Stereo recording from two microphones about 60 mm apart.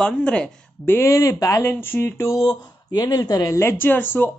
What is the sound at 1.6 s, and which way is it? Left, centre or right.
Speech, left.